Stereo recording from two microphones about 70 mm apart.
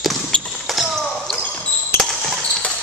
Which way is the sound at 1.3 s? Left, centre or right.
Left.